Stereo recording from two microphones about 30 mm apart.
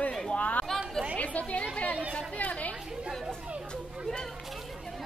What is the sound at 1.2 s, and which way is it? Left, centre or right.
Chatter, left.